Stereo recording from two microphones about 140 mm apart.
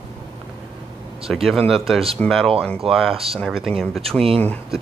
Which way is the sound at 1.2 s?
Centre (ahead or behind).